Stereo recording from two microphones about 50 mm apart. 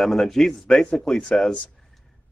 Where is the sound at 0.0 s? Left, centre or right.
Centre.